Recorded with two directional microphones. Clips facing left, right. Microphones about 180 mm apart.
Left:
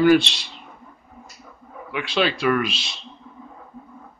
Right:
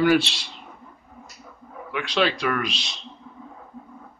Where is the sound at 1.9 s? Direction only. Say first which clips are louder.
Left 1 dB; 5° left (ahead or behind).